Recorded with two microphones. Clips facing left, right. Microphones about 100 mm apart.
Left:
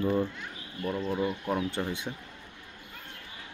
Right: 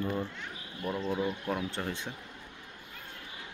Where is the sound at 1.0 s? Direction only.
5° left (ahead or behind).